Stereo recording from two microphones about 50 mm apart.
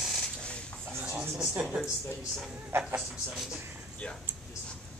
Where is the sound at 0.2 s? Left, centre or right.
Left.